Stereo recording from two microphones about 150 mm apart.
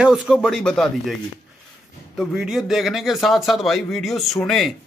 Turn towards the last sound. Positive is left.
turn(degrees=0)  # may be behind; listen again after turning